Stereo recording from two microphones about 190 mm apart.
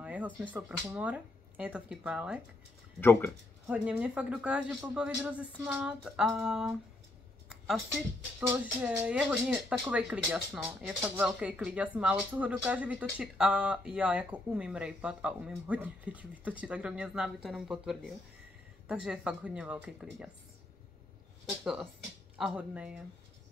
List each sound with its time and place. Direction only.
0.0 s speech: 5° right (ahead or behind)
3.0 s speech: 10° left (ahead or behind)
3.6 s speech: 5° right (ahead or behind)
7.4 s a sound: centre (ahead or behind)
8.4 s speech: 10° right (ahead or behind)
22.4 s speech: 5° right (ahead or behind)